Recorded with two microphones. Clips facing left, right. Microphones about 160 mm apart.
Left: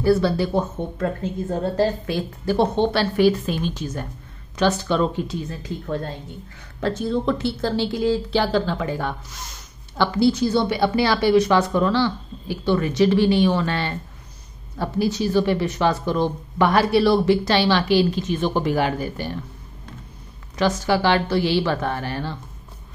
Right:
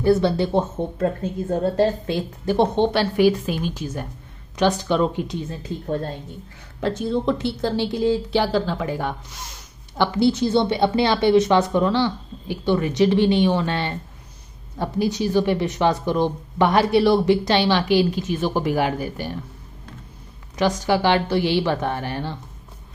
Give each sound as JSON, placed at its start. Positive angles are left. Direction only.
{"t": 0.0, "sound": "a woman's voice", "side_deg": -20}
{"t": 2.0, "sound": "speech", "side_deg": -20}
{"t": 6.8, "sound": "speech", "side_deg": -15}
{"t": 7.9, "sound": "a woman's voice", "side_deg": -25}
{"t": 8.3, "sound": "a woman's voice", "side_deg": -15}
{"t": 20.5, "sound": "speech", "side_deg": -15}